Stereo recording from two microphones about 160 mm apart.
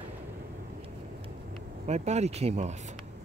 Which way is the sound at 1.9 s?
45° right (ahead or behind).